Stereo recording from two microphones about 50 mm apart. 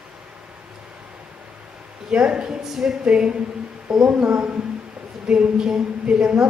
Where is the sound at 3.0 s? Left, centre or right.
Centre.